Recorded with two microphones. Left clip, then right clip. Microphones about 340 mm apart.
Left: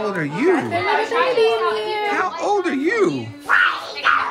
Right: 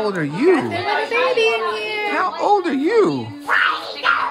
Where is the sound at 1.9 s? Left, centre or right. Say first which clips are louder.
Even; centre.